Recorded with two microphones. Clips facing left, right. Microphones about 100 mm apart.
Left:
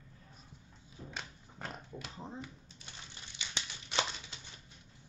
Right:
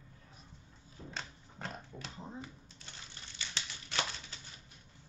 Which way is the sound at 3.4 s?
15° left (ahead or behind).